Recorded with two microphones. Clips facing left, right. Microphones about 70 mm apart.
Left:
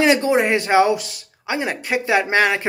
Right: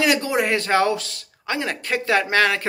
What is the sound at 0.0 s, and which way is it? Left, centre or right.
Speech, left.